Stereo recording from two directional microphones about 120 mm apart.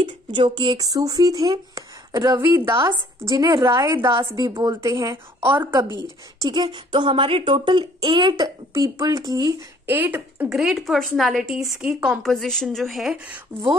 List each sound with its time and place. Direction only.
0.0 s speech: 40° right (ahead or behind)
8.7 s speech: 30° right (ahead or behind)
9.8 s speech: 15° right (ahead or behind)
10.5 s speech: 5° right (ahead or behind)
12.2 s speech: 5° left (ahead or behind)